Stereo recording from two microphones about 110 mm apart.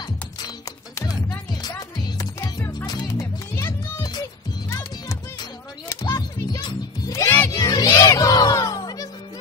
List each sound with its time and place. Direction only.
1.5 s music: 40° left (ahead or behind)
2.4 s music: 20° left (ahead or behind)
2.9 s music: 35° left (ahead or behind)
7.2 s music: 20° left (ahead or behind)
7.5 s music: 35° left (ahead or behind)